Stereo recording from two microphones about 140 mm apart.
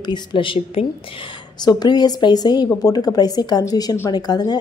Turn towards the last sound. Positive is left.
turn(degrees=30)  # may be behind; listen again after turning